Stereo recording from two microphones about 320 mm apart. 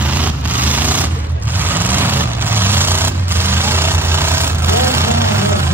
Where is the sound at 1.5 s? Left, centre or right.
Centre.